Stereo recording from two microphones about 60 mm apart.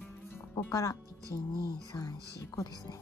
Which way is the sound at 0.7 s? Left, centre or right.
Left.